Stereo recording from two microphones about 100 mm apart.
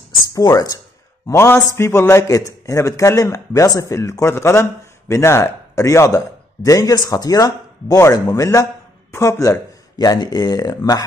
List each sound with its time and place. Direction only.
0.3 s a man's voice: 35° left (ahead or behind)
9.9 s a man's voice: 40° left (ahead or behind)